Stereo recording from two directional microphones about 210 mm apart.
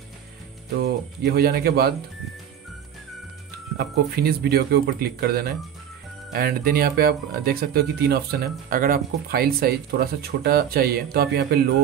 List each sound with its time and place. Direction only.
0.7 s speech: 50° right (ahead or behind)
3.7 s speech: 45° right (ahead or behind)